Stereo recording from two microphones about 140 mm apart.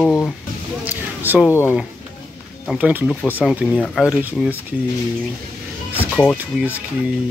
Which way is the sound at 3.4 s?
Centre (ahead or behind).